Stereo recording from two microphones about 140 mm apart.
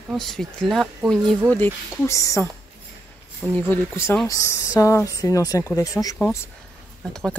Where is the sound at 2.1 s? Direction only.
20° left (ahead or behind).